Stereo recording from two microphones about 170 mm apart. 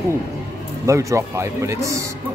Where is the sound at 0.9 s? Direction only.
20° right (ahead or behind).